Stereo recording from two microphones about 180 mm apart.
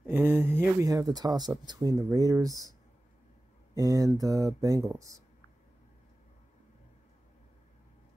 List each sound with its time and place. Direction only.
0.0 s speech: 10° right (ahead or behind)
3.7 s speech: 20° right (ahead or behind)